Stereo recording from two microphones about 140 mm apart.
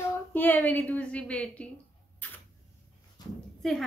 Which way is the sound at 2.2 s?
15° left (ahead or behind).